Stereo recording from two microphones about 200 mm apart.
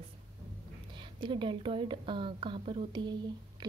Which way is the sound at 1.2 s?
25° right (ahead or behind).